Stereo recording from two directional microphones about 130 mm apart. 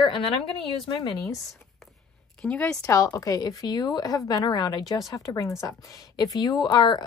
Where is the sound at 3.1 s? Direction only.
25° left (ahead or behind).